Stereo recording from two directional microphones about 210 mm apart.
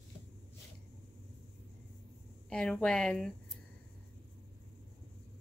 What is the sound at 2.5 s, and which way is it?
A woman's voice, 5° left (ahead or behind).